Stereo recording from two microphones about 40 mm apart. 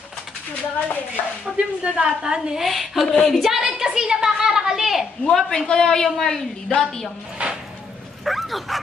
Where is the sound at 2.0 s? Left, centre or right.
Centre.